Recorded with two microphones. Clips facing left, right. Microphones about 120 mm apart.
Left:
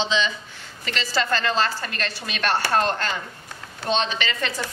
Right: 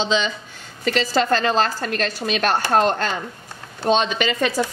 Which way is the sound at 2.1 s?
45° right (ahead or behind).